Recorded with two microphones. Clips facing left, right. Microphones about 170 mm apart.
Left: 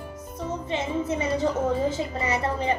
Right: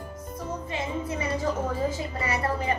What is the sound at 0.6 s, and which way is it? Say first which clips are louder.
A woman's voice: left 5 dB; 25° left (ahead or behind).